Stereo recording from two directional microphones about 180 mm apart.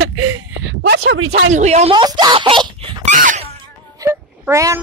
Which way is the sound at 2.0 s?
25° right (ahead or behind).